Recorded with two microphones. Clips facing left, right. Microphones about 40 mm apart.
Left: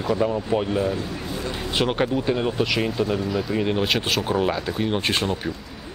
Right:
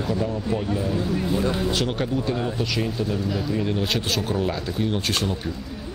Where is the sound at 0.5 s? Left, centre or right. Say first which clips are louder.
Left 2 dB; left.